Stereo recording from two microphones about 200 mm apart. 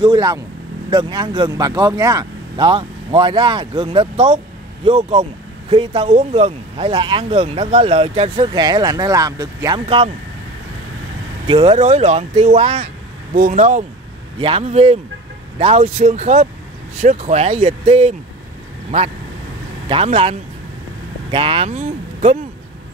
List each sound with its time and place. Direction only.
0.0 s speech: 20° right (ahead or behind)
9.8 s speech: 30° right (ahead or behind)
11.4 s speech: 25° right (ahead or behind)
13.3 s speech: 45° right (ahead or behind); by 18.1 s 30° right (ahead or behind)
19.9 s speech: 30° right (ahead or behind)